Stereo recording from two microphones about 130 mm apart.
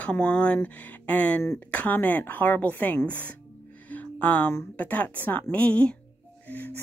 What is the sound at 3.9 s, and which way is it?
Music, 10° left (ahead or behind).